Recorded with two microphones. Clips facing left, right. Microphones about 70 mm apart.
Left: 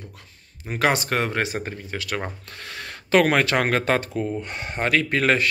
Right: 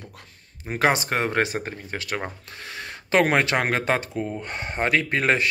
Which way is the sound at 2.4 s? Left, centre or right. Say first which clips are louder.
Even; centre.